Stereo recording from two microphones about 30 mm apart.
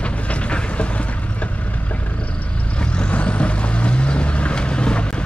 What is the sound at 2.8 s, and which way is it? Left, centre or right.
Vehicle, left.